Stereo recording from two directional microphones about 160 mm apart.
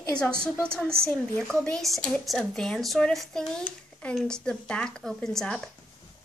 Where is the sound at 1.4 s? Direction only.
5° left (ahead or behind).